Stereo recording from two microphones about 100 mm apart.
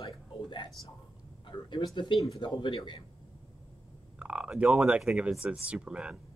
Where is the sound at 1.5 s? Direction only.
50° left (ahead or behind).